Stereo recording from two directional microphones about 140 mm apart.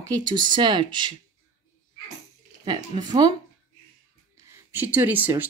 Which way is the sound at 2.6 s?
30° right (ahead or behind).